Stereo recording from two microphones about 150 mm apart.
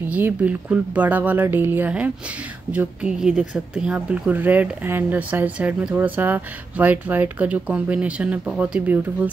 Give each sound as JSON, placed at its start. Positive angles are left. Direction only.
{"t": 0.1, "sound": "speech", "side_deg": -10}